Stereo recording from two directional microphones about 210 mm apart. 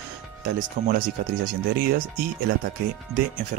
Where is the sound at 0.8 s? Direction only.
35° right (ahead or behind).